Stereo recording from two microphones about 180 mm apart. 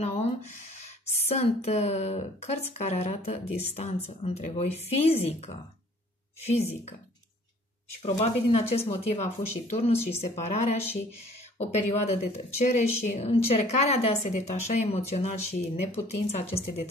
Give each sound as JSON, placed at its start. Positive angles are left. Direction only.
{"t": 1.2, "sound": "a woman's voice", "side_deg": 35}
{"t": 8.0, "sound": "a woman's voice", "side_deg": 35}